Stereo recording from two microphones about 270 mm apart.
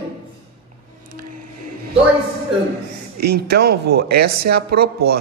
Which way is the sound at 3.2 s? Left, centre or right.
Right.